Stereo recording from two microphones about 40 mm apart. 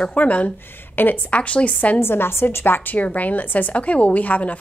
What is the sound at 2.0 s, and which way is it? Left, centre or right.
Speech, left.